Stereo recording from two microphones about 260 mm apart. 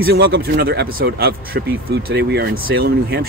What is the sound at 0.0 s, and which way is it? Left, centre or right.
Speech, right.